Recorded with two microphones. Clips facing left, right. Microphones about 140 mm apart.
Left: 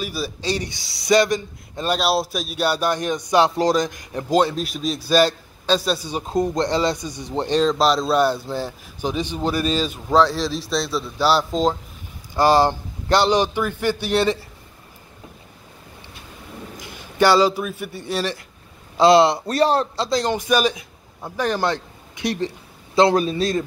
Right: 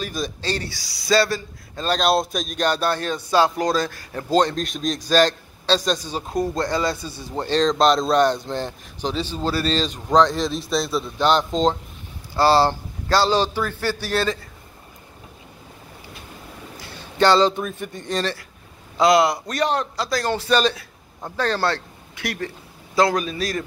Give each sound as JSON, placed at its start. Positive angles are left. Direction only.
{"t": 0.0, "sound": "speech", "side_deg": 10}
{"t": 2.0, "sound": "speech", "side_deg": 5}
{"t": 7.6, "sound": "speech", "side_deg": 0}
{"t": 12.4, "sound": "a man's voice", "side_deg": 15}
{"t": 16.7, "sound": "a man's voice", "side_deg": 15}
{"t": 18.9, "sound": "a man's voice", "side_deg": 30}